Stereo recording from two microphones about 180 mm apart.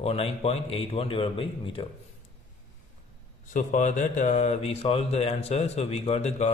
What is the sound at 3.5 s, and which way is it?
Speech, 45° left (ahead or behind).